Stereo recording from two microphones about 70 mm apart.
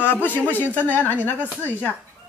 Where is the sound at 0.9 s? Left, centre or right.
Left.